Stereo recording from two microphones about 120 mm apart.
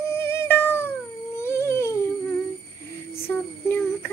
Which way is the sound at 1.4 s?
20° left (ahead or behind).